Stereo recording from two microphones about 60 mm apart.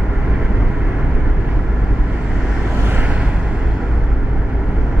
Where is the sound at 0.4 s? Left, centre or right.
Right.